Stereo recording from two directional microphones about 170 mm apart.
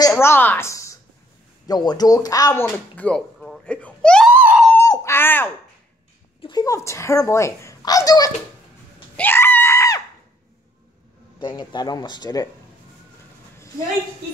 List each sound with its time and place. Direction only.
0.2 s a woman's voice: 15° left (ahead or behind)
4.3 s screaming: 10° right (ahead or behind)
4.8 s a sound: 20° left (ahead or behind)
6.4 s a child's voice: 20° left (ahead or behind)
9.1 s screaming: 10° left (ahead or behind)
11.3 s a child's voice: 25° left (ahead or behind)